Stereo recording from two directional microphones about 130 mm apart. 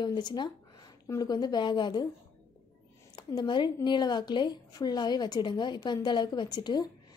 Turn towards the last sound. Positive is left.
turn(degrees=30)  # may be behind; listen again after turning